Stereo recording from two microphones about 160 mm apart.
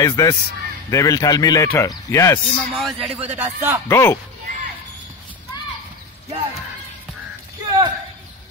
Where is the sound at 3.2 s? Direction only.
10° right (ahead or behind).